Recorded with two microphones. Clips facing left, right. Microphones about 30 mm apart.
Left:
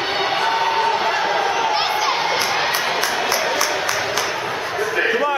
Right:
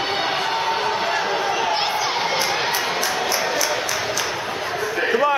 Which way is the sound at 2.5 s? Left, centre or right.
Centre.